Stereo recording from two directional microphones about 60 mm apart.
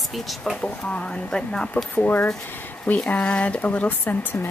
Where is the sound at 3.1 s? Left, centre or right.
Left.